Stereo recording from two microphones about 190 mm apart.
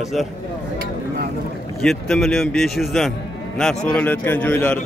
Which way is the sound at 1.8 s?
5° left (ahead or behind).